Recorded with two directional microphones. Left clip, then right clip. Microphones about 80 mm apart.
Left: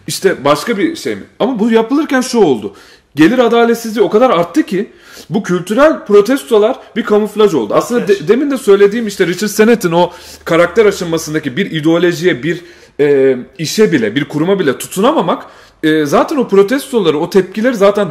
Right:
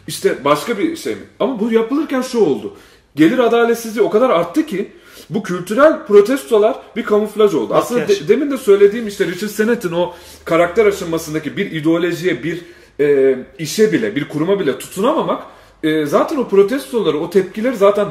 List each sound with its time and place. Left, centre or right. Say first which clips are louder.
0.0 s speech: left 4 dB; left